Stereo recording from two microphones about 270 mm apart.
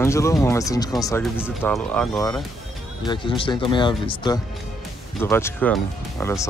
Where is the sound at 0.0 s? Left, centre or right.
Centre.